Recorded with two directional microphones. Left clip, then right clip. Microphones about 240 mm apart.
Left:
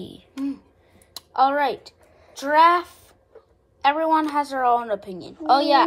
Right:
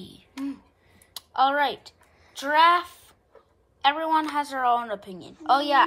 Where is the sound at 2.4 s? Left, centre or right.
Centre.